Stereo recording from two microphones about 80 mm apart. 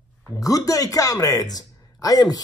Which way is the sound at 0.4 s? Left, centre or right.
Left.